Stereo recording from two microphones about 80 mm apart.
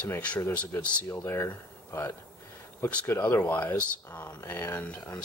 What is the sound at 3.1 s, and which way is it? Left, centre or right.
Speech, centre.